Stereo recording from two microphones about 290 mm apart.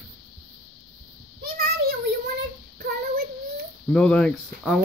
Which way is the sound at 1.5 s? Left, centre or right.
Right.